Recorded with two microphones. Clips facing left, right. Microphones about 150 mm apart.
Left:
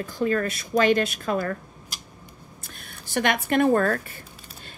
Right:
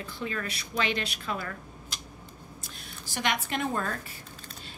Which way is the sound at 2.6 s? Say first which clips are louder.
Left 1 dB; 60° left (ahead or behind).